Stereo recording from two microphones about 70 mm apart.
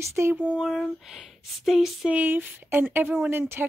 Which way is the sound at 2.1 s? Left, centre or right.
Right.